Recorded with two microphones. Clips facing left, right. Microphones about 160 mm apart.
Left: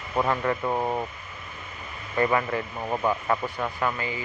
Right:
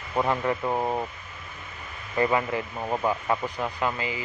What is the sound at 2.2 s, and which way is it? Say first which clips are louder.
Speech: even; 20° right (ahead or behind).